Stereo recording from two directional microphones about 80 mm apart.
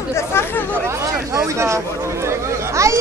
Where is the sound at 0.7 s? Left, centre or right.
Right.